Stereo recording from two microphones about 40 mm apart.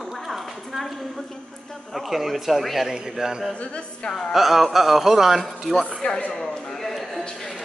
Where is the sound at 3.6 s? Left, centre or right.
Left.